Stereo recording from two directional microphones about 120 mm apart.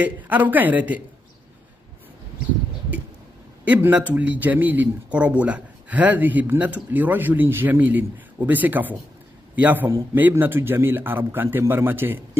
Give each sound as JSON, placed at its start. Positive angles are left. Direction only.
{"t": 0.0, "sound": "speech", "side_deg": -15}
{"t": 3.6, "sound": "speech", "side_deg": -10}